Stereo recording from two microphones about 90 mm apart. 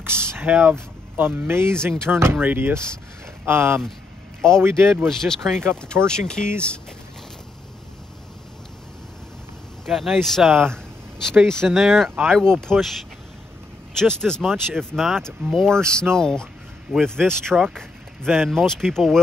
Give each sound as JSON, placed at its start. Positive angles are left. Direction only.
{"t": 0.3, "sound": "speech", "side_deg": -20}
{"t": 5.0, "sound": "speech", "side_deg": 5}
{"t": 5.5, "sound": "speech", "side_deg": -25}
{"t": 6.0, "sound": "speech", "side_deg": 10}
{"t": 9.8, "sound": "speech", "side_deg": 0}
{"t": 13.9, "sound": "speech", "side_deg": 5}
{"t": 17.7, "sound": "vehicle", "side_deg": 0}
{"t": 18.5, "sound": "speech", "side_deg": 5}